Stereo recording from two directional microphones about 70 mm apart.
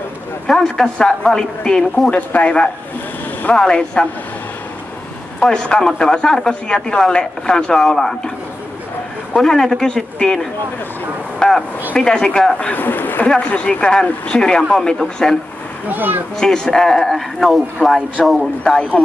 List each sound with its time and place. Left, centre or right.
0.5 s speech: centre
2.0 s speech: left
5.4 s speech: centre
9.3 s speech: centre
11.3 s a sound: centre
11.9 s speech: centre
15.9 s speech: right
16.3 s speech: centre
17.8 s speech: centre
18.2 s speech: centre
19.0 s speech: centre